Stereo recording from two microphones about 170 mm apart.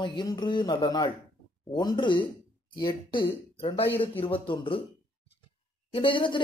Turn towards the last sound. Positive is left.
turn(degrees=30)  # may be behind; listen again after turning